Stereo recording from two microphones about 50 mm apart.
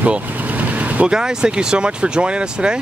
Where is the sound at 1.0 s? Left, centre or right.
Centre.